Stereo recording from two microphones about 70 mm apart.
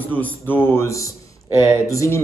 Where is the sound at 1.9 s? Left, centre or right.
Left.